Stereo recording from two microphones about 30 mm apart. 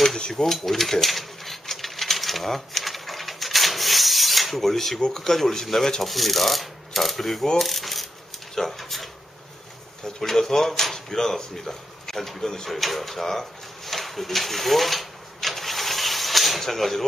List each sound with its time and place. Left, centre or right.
0.5 s a sound: centre
6.0 s speech: centre
7.5 s coin: centre
8.5 s speech: centre
10.2 s speech: centre
12.6 s a sound: centre